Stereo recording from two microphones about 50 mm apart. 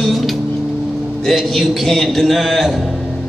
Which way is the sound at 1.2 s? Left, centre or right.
Centre.